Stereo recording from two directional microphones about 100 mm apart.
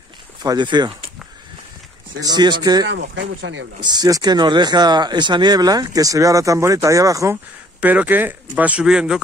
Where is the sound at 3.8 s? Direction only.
40° right (ahead or behind).